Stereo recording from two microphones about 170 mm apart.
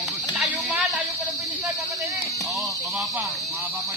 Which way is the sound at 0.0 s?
Centre (ahead or behind).